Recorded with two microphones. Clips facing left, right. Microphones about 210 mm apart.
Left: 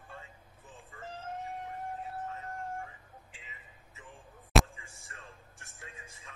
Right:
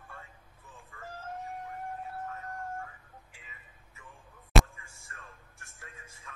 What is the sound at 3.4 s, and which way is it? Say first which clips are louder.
Vehicle: left 2 dB; 20° left (ahead or behind).